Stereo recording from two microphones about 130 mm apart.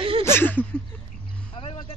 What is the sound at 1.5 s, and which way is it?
Vehicle, 45° left (ahead or behind).